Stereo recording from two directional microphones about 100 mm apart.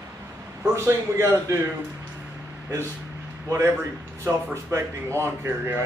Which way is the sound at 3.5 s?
30° right (ahead or behind).